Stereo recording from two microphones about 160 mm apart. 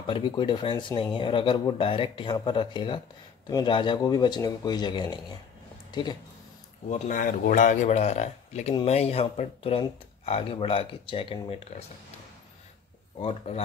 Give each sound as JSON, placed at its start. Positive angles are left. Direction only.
{"t": 0.0, "sound": "speech", "side_deg": 30}
{"t": 5.9, "sound": "a sound", "side_deg": 30}
{"t": 6.9, "sound": "speech", "side_deg": 55}
{"t": 13.2, "sound": "speech", "side_deg": 40}